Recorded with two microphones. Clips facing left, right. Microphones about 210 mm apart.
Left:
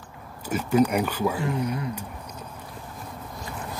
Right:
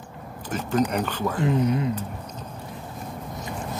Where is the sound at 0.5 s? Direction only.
10° left (ahead or behind).